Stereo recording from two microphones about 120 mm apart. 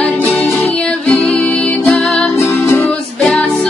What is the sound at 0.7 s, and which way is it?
Music, 10° left (ahead or behind).